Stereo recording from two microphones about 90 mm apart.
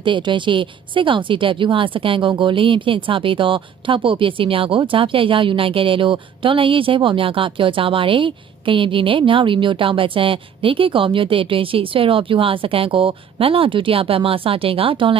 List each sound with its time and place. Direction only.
0.0 s speech: 65° right (ahead or behind)